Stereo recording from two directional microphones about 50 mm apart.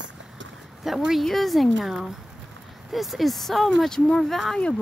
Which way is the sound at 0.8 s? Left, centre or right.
Centre.